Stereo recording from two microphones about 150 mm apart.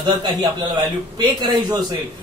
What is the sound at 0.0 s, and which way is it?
A man's voice, 30° right (ahead or behind).